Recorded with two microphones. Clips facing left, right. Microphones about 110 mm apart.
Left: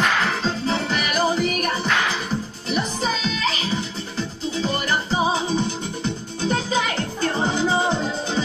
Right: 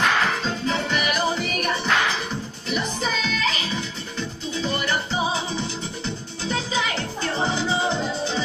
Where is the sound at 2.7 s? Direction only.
35° left (ahead or behind).